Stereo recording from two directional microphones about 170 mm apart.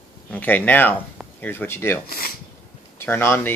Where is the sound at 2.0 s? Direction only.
60° left (ahead or behind).